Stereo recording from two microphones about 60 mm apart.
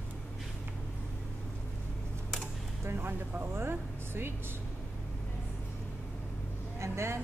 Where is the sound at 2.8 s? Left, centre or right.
Right.